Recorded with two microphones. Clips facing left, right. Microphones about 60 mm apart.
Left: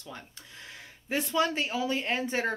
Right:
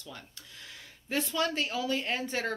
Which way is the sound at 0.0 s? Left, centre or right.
Left.